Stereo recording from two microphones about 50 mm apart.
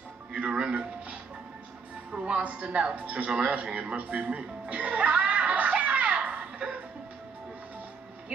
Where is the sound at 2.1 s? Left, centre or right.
Right.